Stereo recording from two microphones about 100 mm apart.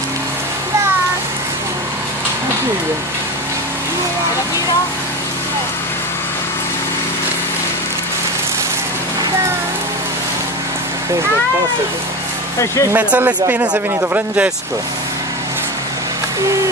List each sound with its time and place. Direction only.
12.9 s speech: 20° right (ahead or behind)